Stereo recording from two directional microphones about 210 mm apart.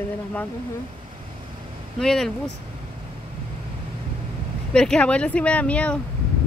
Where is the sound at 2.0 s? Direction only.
Centre (ahead or behind).